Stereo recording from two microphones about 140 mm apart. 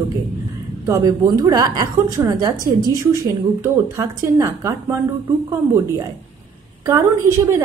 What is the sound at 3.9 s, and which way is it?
A woman's voice, 20° right (ahead or behind).